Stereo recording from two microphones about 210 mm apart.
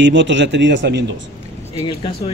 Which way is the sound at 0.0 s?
60° right (ahead or behind).